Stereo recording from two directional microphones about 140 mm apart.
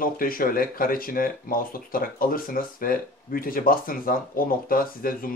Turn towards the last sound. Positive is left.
turn(degrees=90)